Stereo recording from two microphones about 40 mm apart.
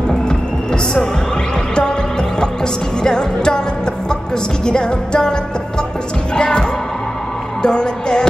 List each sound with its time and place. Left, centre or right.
1.8 s music: left
7.6 s music: left